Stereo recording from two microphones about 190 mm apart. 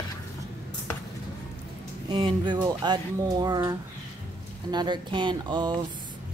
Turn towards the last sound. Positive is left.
turn(degrees=-25)  # may be behind; listen again after turning